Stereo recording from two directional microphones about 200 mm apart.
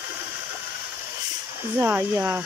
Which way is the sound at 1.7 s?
10° right (ahead or behind).